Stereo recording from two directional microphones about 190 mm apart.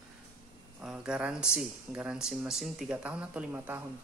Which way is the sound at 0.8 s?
5° right (ahead or behind).